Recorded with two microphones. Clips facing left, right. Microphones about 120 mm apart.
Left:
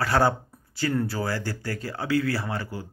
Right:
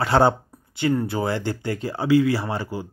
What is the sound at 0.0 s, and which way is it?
Speech, 25° right (ahead or behind).